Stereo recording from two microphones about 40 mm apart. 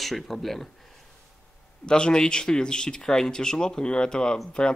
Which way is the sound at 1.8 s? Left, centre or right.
Left.